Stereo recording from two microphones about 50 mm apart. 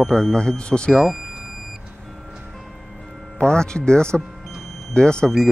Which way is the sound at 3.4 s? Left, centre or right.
Centre.